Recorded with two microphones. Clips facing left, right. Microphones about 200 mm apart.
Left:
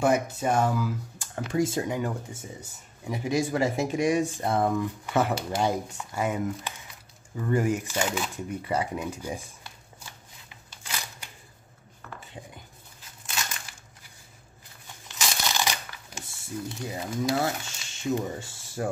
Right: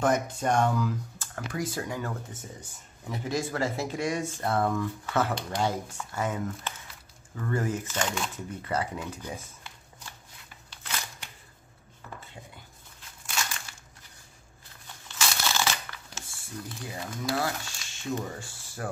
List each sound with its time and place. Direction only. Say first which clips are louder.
0.0 s speech: left 2 dB; 10° left (ahead or behind)
1.5 s speech: left 7 dB; 25° left (ahead or behind)
15.1 s crunch: even; 15° left (ahead or behind)
16.2 s speech: left 6 dB; 20° left (ahead or behind)